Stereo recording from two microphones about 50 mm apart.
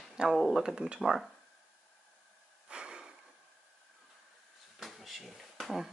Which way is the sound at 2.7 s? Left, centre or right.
Centre.